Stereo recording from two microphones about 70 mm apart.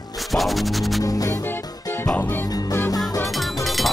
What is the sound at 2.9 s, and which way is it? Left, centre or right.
Music, left.